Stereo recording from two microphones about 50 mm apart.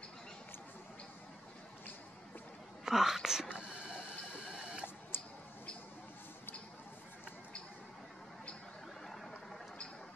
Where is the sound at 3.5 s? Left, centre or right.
Right.